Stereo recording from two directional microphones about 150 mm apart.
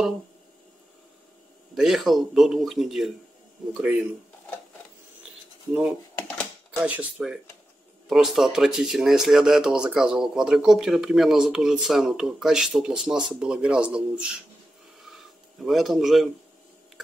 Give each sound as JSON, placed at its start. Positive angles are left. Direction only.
{"t": 1.8, "sound": "speech", "side_deg": 0}
{"t": 6.1, "sound": "typewriter", "side_deg": 10}
{"t": 6.8, "sound": "speech", "side_deg": -10}
{"t": 15.0, "sound": "a sound", "side_deg": 0}